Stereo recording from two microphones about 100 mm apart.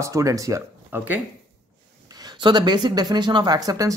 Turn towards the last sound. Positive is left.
turn(degrees=-35)  # may be behind; listen again after turning